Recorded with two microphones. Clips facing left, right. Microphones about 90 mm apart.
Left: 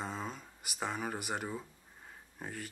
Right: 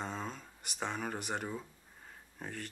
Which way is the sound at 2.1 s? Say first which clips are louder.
Even; 5° left (ahead or behind).